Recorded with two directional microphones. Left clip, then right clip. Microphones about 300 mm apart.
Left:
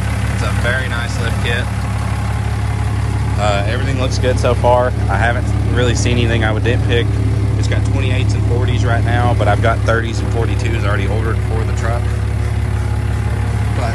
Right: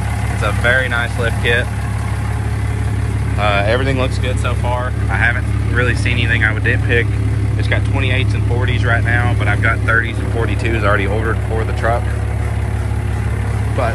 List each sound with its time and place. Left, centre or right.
0.4 s speech: centre
3.3 s speech: centre
4.4 s speech: centre